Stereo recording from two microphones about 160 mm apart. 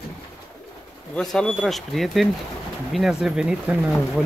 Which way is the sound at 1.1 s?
5° left (ahead or behind).